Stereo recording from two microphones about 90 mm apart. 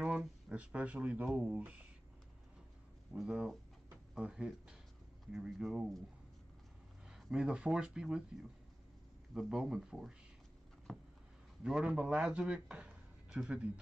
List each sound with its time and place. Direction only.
0.0 s speech: 10° right (ahead or behind)
3.1 s speech: 10° right (ahead or behind)
7.1 s speech: 5° right (ahead or behind)
9.3 s speech: 5° right (ahead or behind)
10.9 s a sound: 5° left (ahead or behind)
11.6 s a man's voice: 10° right (ahead or behind)